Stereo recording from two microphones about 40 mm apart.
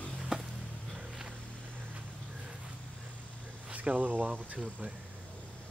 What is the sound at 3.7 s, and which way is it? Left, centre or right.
Speech, right.